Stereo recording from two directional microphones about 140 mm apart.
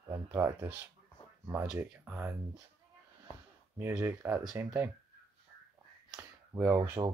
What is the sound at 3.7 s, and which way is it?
Speech, 15° right (ahead or behind).